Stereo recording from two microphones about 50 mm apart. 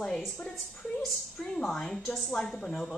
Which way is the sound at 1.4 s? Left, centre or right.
Centre.